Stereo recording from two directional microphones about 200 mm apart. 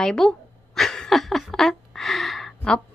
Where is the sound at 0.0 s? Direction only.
5° left (ahead or behind).